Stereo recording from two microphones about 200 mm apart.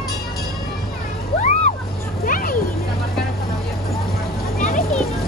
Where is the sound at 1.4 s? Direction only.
35° left (ahead or behind).